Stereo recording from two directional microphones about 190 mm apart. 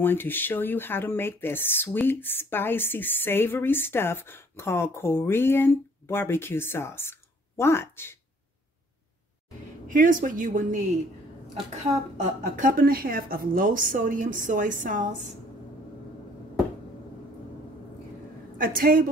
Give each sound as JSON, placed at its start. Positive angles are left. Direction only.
{"t": 0.0, "sound": "speech", "side_deg": 10}
{"t": 9.8, "sound": "a woman's voice", "side_deg": -45}
{"t": 18.6, "sound": "a woman's voice", "side_deg": -50}